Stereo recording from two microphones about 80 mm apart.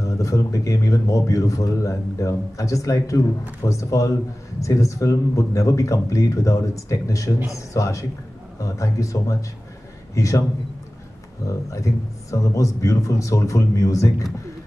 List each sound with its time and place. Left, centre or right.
0.0 s a man's voice: left
11.4 s speech: left